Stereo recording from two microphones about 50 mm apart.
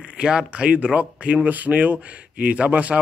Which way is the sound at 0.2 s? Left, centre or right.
Centre.